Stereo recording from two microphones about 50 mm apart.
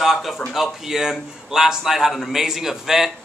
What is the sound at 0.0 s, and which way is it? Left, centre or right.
A man's voice, centre.